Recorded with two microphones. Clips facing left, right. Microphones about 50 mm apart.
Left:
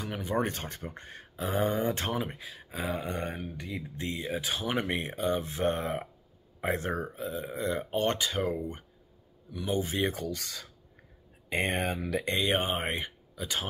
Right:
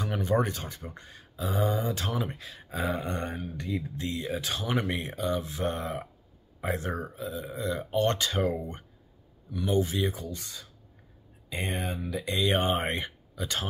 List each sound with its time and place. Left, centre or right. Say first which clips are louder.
0.0 s speech: right 5 dB; centre
0.4 s speech: right 1 dB; left
2.1 s speech: right 1 dB; centre
3.9 s speech: right 1 dB; left
8.0 s speech: right 3 dB; centre
8.3 s speech: right 2 dB; centre
9.8 s speech: right 4 dB; left
10.0 s speech: left 1 dB; left
11.4 s speech: left 3 dB; left
12.6 s speech: right 3 dB; centre